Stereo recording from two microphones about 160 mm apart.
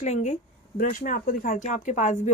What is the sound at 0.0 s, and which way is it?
Speech, 50° left (ahead or behind).